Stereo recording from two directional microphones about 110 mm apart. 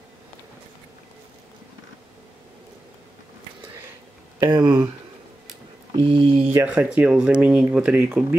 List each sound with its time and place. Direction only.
4.5 s speech: 45° right (ahead or behind)
5.9 s a sound: 55° right (ahead or behind)
6.5 s speech: 15° right (ahead or behind)